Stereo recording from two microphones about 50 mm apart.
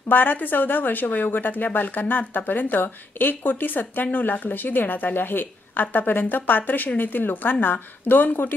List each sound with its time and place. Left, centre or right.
0.1 s a woman's voice: left